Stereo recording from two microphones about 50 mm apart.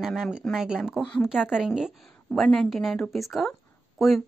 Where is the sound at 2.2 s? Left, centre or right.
Centre.